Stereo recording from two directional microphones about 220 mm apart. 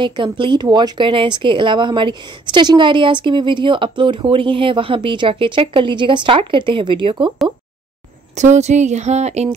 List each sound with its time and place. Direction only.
0.0 s speech: 20° right (ahead or behind)
8.4 s speech: 30° right (ahead or behind)